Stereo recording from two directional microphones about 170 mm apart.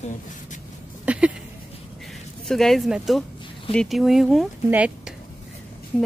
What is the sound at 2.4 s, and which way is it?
Speech, centre (ahead or behind).